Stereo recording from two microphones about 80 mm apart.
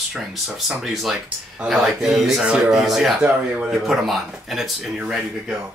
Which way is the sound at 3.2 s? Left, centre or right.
Centre.